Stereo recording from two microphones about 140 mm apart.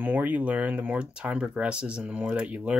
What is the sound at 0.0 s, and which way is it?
Speech, 10° right (ahead or behind).